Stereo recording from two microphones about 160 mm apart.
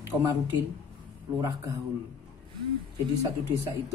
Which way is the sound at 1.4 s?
20° right (ahead or behind).